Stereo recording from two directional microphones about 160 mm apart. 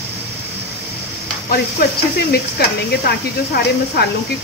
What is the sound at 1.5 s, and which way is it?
Speech, 75° left (ahead or behind).